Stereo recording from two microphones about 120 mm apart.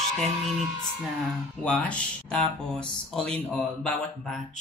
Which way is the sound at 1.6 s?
10° left (ahead or behind).